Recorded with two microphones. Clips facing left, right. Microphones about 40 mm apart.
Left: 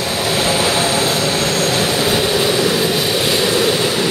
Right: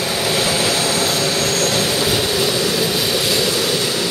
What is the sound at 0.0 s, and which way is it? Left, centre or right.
Vehicle, centre.